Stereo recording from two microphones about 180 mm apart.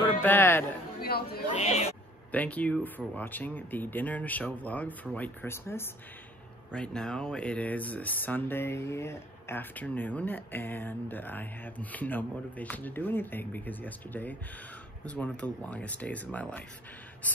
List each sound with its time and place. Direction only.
0.2 s speech: 10° left (ahead or behind)
1.0 s speech: 60° left (ahead or behind)
1.5 s speech: 40° left (ahead or behind)
2.3 s speech: 10° left (ahead or behind)